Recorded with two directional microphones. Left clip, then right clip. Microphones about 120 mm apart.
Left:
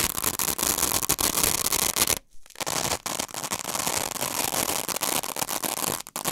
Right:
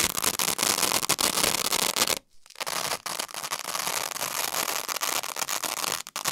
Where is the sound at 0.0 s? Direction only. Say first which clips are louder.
Right 2 dB; 40° left (ahead or behind).